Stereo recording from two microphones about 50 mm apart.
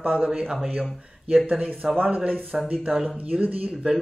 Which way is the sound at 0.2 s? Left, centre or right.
Centre.